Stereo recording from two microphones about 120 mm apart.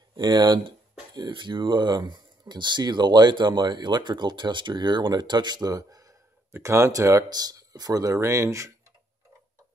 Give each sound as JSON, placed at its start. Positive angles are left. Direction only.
{"t": 0.1, "sound": "speech", "side_deg": -35}